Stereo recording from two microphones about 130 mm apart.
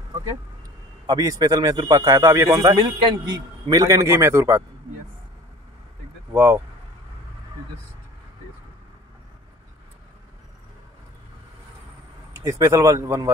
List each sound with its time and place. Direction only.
1.0 s a man's voice: 25° right (ahead or behind)
6.3 s speech: 20° right (ahead or behind)
12.4 s a man's voice: 25° right (ahead or behind)